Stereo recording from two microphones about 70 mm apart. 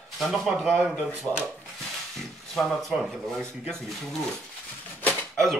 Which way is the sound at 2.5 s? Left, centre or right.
Centre.